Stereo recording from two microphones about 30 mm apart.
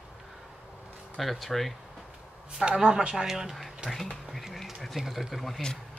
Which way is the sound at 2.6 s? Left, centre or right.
Right.